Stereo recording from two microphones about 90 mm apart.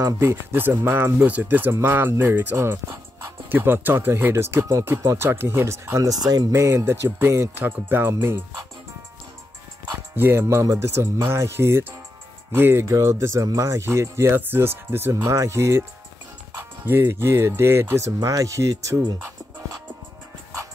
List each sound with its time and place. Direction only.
0.0 s speech: 30° right (ahead or behind)
6.2 s speech: 45° right (ahead or behind)
6.5 s speech: 35° right (ahead or behind)
10.1 s speech: 25° right (ahead or behind)